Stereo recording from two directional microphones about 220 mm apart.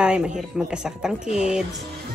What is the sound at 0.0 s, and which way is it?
Speech, 5° right (ahead or behind).